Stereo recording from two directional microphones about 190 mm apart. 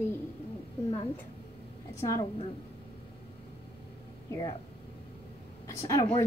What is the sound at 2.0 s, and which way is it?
Speech, 15° left (ahead or behind).